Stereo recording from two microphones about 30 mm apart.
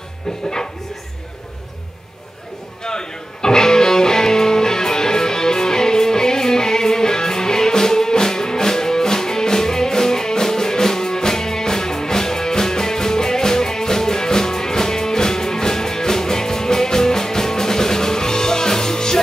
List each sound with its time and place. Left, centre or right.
2.8 s music: left